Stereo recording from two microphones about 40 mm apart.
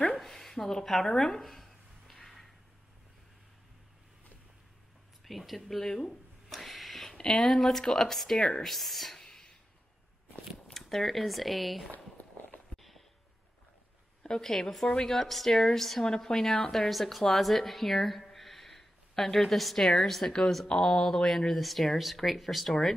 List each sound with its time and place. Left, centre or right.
0.2 s a sound: centre
5.2 s speech: centre
6.0 s a sound: centre
7.2 s speech: centre
8.7 s speech: centre
9.2 s sneeze: centre
10.7 s speech: centre
12.2 s walk: left
12.7 s a sound: centre
14.2 s speech: centre
15.1 s speech: centre